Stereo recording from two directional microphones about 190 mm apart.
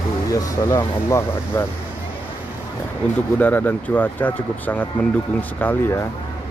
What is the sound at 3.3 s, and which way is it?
Speech, 10° left (ahead or behind).